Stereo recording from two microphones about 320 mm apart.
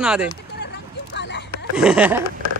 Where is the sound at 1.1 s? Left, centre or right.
Left.